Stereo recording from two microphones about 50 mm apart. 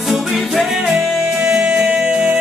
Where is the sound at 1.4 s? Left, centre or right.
Centre.